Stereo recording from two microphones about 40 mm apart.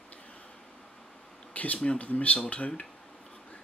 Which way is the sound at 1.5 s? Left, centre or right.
Left.